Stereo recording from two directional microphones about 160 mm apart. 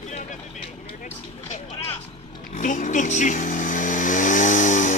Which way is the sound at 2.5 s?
55° left (ahead or behind).